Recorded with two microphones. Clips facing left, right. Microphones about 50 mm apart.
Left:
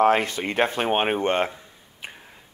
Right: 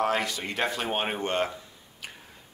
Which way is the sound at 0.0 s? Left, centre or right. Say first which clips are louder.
Left 7 dB; left.